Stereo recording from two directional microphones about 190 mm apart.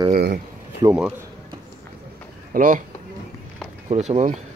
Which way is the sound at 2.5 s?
45° right (ahead or behind).